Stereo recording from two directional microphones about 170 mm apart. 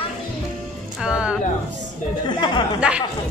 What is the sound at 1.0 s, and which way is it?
Speech, 5° right (ahead or behind).